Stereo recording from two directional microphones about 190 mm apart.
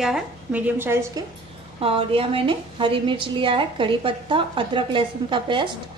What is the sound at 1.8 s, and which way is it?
A woman's voice, 30° right (ahead or behind).